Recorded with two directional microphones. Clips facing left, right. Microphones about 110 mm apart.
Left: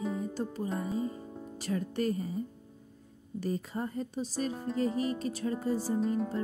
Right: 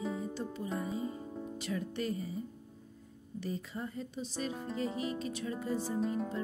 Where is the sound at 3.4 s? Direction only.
45° left (ahead or behind).